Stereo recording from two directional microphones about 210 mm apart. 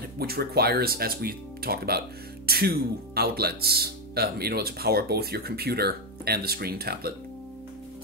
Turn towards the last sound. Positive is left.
turn(degrees=-45)  # may be behind; listen again after turning